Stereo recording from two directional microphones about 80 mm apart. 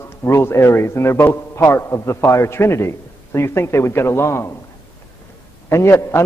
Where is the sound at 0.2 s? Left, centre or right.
Left.